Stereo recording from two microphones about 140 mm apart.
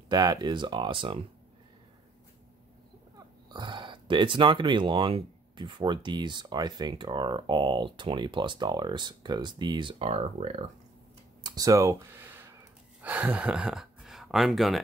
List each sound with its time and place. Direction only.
0.1 s speech: 30° right (ahead or behind)
3.4 s speech: 30° right (ahead or behind); by 10.7 s 50° right (ahead or behind)
11.4 s speech: 25° right (ahead or behind); by 14.8 s centre (ahead or behind)